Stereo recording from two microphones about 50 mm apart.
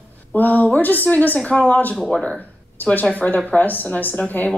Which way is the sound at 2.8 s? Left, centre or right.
Left.